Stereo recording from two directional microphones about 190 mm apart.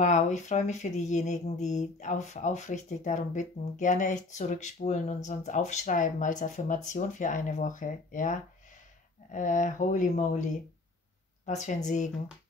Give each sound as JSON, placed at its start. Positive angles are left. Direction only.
{"t": 0.0, "sound": "speech", "side_deg": 40}
{"t": 11.4, "sound": "speech", "side_deg": 40}